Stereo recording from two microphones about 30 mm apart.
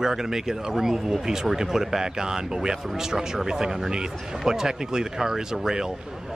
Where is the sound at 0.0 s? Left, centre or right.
Centre.